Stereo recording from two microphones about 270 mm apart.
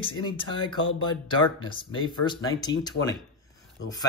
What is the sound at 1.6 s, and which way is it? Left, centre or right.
Speech, centre.